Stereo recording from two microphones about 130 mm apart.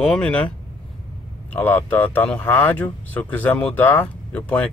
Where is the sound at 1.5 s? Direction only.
15° left (ahead or behind).